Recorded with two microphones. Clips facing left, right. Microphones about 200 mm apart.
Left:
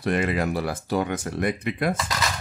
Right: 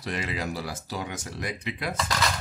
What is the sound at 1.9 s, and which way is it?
Speech, 5° left (ahead or behind).